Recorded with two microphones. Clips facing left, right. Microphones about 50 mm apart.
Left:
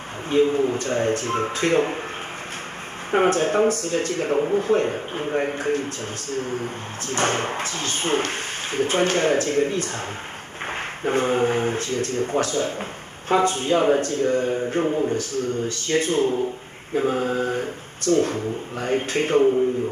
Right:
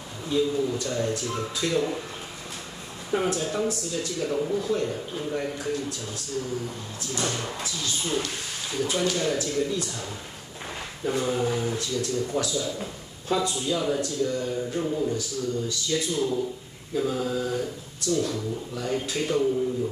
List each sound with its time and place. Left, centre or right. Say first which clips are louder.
0.3 s speech: left 6 dB; left
3.1 s speech: left 7 dB; left